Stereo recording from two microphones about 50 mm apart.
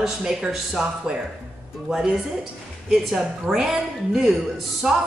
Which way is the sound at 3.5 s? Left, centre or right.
Centre.